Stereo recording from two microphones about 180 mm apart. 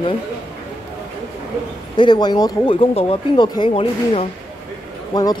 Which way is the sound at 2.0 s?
25° left (ahead or behind).